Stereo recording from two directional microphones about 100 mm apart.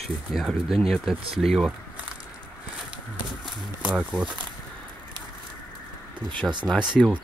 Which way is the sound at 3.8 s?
5° right (ahead or behind).